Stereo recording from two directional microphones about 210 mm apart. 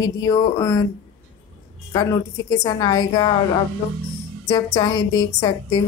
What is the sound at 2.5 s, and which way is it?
Speech, 20° left (ahead or behind).